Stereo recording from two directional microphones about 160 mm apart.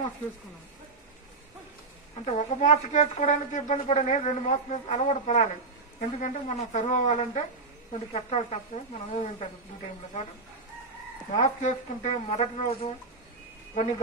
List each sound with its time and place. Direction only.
2.2 s speech: 45° left (ahead or behind)
11.3 s speech: 45° left (ahead or behind)